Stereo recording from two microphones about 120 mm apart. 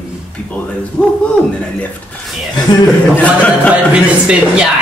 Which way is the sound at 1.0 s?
10° left (ahead or behind).